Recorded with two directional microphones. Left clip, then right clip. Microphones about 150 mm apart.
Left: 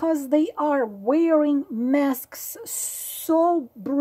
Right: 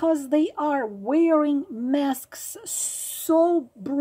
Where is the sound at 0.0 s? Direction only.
30° left (ahead or behind).